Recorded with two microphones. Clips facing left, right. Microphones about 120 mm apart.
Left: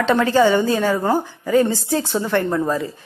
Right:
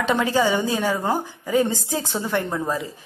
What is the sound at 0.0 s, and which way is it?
A woman's voice, 10° right (ahead or behind).